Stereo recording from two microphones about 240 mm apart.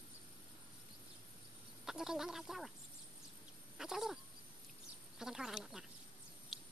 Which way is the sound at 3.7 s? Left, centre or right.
Centre.